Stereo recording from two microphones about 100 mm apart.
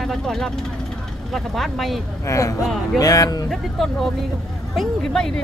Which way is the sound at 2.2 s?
35° left (ahead or behind).